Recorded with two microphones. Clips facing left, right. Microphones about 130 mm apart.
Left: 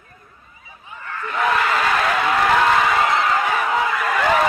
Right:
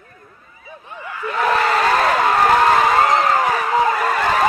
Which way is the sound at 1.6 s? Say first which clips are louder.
Right 3 dB; 35° right (ahead or behind).